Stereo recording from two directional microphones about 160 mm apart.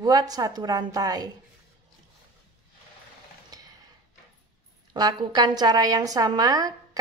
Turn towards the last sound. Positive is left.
turn(degrees=-25)  # may be behind; listen again after turning